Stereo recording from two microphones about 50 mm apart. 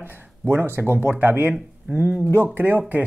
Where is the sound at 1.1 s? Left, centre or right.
Right.